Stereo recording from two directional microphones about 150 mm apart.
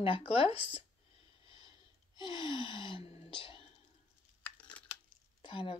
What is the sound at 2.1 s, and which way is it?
Speech, 30° left (ahead or behind).